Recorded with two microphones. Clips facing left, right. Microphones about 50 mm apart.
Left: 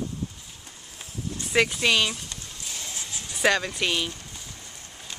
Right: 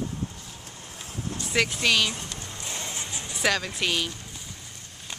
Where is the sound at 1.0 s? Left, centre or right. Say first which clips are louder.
Even; right.